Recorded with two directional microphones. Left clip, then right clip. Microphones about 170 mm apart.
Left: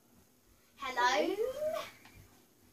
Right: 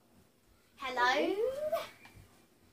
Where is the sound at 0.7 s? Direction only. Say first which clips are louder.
Even; 20° right (ahead or behind).